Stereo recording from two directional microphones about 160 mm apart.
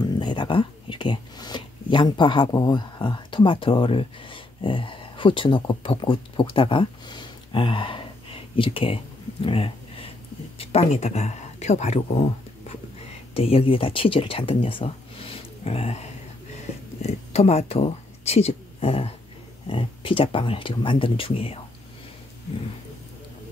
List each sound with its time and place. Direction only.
0.0 s whispering: 30° left (ahead or behind)
10.6 s speech: 40° left (ahead or behind)
13.3 s speech: 35° left (ahead or behind)